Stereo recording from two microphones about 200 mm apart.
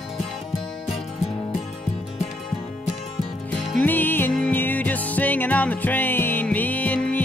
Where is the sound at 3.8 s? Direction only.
10° left (ahead or behind).